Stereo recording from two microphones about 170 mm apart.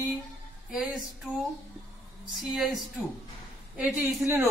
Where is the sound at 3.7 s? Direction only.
10° right (ahead or behind).